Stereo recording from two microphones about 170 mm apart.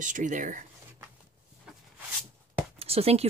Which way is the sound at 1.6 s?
Centre (ahead or behind).